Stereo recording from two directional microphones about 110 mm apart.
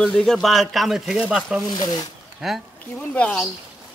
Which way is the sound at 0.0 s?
5° left (ahead or behind).